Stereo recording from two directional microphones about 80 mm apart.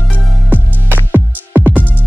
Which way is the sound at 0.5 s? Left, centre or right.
Right.